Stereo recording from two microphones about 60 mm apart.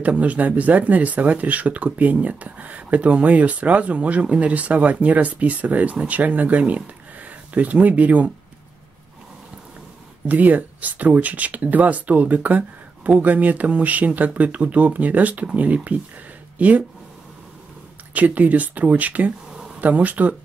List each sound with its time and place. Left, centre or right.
0.0 s speech: right
10.2 s speech: right
18.1 s speech: right